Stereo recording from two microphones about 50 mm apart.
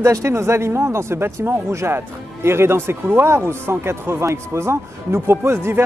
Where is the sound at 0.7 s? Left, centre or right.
Right.